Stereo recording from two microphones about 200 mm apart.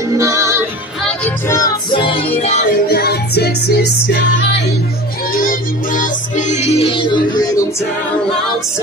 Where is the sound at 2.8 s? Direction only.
50° left (ahead or behind).